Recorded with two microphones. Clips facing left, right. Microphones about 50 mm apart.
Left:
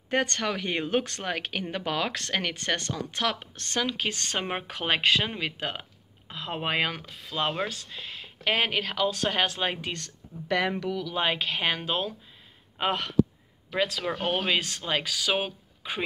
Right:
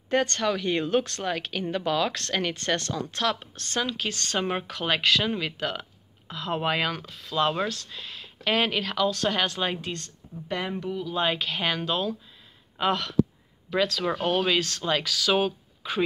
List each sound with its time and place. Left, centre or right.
0.1 s speech: left
2.1 s speech: left
9.8 s speech: left
10.5 s speech: left
11.3 s speech: left